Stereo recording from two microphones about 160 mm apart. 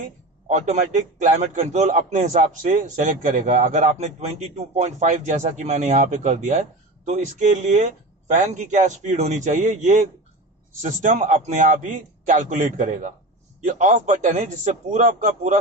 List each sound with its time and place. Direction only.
0.5 s speech: 50° right (ahead or behind)